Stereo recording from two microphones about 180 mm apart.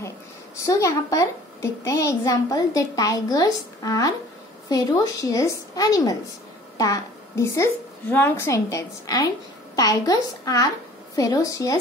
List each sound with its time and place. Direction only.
0.7 s a child's voice: 20° left (ahead or behind)